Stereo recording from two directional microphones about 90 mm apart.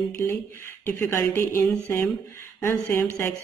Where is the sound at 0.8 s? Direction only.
25° left (ahead or behind).